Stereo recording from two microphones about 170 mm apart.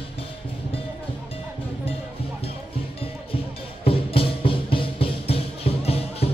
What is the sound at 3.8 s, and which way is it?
Music, 35° left (ahead or behind).